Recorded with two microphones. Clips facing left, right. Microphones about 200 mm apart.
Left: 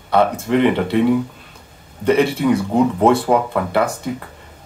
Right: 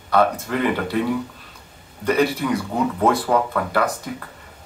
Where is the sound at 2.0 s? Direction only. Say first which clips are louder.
Left 5 dB; 25° left (ahead or behind).